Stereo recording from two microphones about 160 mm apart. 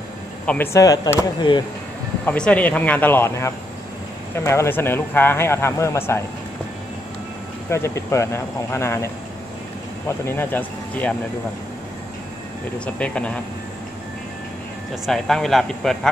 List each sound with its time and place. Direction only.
0.7 s speech: 20° left (ahead or behind)
2.2 s speech: 5° left (ahead or behind)
7.7 s speech: 15° left (ahead or behind)
12.7 s speech: 5° left (ahead or behind)
15.0 s speech: centre (ahead or behind)